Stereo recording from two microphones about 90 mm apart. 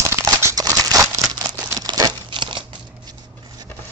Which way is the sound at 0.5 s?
45° right (ahead or behind).